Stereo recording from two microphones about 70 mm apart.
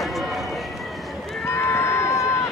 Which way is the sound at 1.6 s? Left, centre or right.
Left.